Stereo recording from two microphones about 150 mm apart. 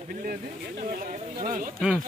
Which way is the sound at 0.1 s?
65° right (ahead or behind).